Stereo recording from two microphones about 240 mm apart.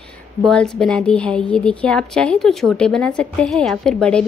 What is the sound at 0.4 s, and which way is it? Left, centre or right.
A woman's voice, centre.